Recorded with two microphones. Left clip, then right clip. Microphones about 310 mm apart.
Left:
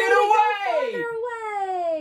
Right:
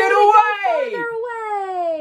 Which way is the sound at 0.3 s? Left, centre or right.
Centre.